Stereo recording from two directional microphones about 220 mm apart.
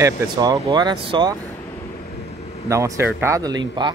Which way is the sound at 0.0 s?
15° right (ahead or behind).